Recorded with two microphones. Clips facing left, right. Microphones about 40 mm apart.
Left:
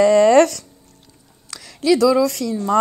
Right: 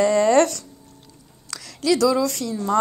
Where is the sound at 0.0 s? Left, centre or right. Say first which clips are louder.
Left 5 dB; left.